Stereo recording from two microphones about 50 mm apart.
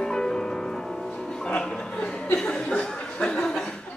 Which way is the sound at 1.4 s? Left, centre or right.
Left.